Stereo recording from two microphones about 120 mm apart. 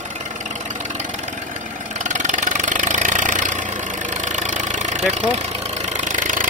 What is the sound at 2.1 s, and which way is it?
Engine, 90° right.